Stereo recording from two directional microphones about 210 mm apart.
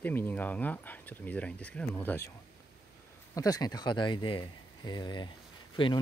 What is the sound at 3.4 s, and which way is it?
Speech, 15° left (ahead or behind).